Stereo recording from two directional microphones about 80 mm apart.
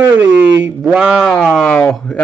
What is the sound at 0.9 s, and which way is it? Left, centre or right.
Speech, centre.